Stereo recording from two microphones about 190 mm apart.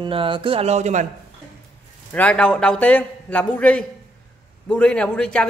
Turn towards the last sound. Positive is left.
turn(degrees=5)  # may be behind; listen again after turning